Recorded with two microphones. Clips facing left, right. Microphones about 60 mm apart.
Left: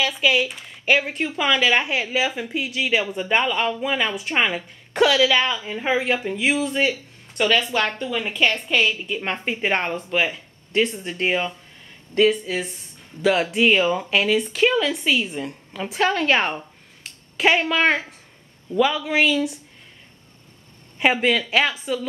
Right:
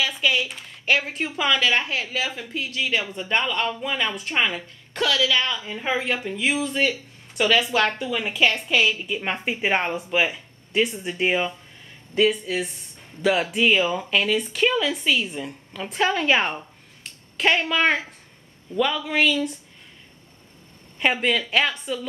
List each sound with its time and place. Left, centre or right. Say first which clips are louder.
0.0 s speech: left 3 dB; centre
4.9 s a woman's voice: left 5 dB; left
5.5 s speech: left 3 dB; centre
7.3 s speech: even; centre
21.0 s speech: left 3 dB; centre